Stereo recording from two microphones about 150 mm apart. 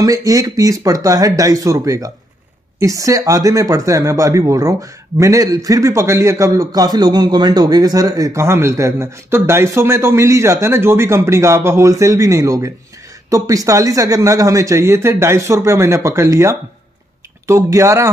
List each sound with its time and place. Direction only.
0.0 s speech: 25° right (ahead or behind)